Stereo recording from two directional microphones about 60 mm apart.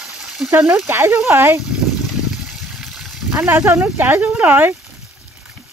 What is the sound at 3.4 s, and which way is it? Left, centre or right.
Speech, right.